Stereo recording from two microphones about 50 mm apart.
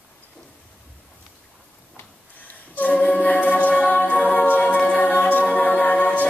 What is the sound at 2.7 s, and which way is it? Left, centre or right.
A capella, left.